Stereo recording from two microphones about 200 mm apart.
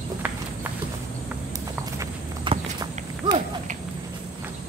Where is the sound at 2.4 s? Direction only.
25° right (ahead or behind).